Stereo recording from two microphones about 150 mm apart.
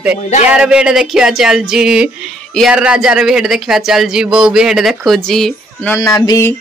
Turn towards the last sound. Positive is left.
turn(degrees=25)  # may be behind; listen again after turning